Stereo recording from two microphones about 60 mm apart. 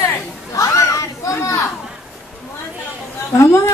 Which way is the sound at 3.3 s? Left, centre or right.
Left.